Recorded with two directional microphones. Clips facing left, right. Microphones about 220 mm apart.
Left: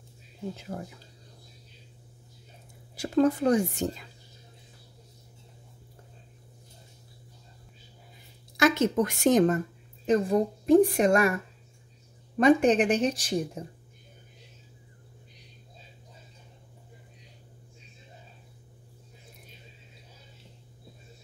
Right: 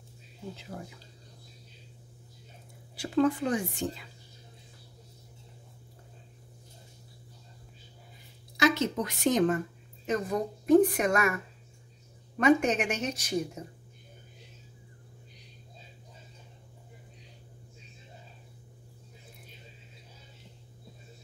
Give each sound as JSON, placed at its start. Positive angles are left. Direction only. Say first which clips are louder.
{"t": 0.7, "sound": "speech", "louder": "left 2 dB", "side_deg": 50}
{"t": 3.0, "sound": "a woman's voice", "louder": "left 3 dB", "side_deg": 40}
{"t": 8.5, "sound": "speech", "louder": "left 3 dB", "side_deg": 50}
{"t": 10.0, "sound": "a woman's voice", "louder": "left 6 dB", "side_deg": 30}
{"t": 12.4, "sound": "a woman's voice", "louder": "left 4 dB", "side_deg": 35}